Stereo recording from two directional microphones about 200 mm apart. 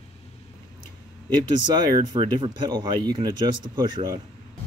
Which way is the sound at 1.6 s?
20° right (ahead or behind).